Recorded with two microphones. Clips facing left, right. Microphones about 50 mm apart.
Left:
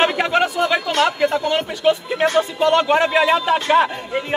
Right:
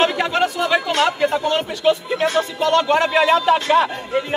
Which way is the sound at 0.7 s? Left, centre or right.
Centre.